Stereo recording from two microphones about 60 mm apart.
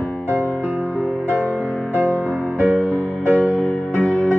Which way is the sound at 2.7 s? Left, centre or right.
Centre.